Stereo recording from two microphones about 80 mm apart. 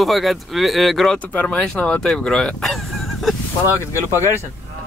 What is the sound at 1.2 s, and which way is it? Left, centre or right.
Speech, centre.